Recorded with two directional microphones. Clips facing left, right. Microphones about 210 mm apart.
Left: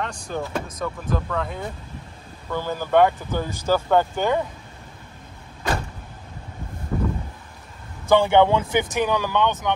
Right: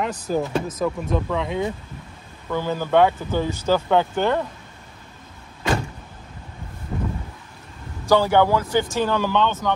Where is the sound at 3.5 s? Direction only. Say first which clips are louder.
Left 1 dB; 10° left (ahead or behind).